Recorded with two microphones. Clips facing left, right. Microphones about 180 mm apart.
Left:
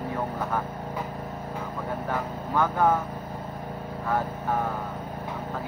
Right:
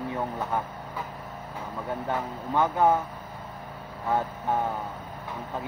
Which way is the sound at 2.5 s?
20° right (ahead or behind).